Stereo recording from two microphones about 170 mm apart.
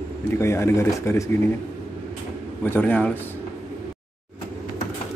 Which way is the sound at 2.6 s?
10° left (ahead or behind).